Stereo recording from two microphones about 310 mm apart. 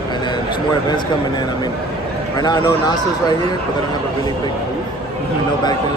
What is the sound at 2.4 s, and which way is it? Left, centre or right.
Speech, centre.